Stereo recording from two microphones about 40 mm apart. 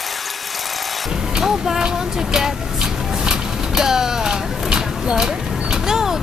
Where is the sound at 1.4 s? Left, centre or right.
Centre.